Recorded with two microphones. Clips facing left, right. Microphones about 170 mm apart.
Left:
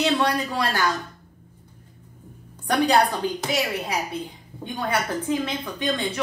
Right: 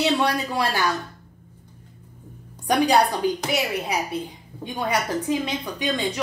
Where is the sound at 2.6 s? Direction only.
15° right (ahead or behind).